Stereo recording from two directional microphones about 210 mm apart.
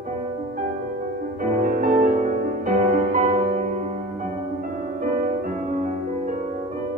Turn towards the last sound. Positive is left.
turn(degrees=-40)  # may be behind; listen again after turning